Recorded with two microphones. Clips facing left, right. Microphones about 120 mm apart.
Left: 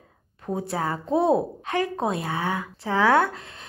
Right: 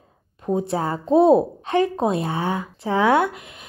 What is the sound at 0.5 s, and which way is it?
A woman's voice, 25° right (ahead or behind).